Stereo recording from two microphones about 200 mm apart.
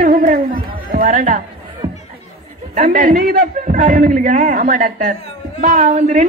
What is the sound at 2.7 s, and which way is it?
A man's voice, 35° right (ahead or behind).